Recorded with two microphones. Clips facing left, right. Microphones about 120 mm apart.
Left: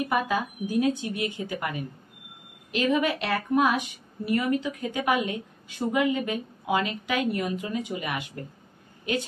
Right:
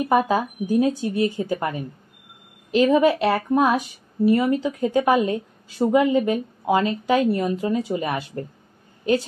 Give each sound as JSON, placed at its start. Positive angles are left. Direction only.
{"t": 0.1, "sound": "a woman's voice", "side_deg": -40}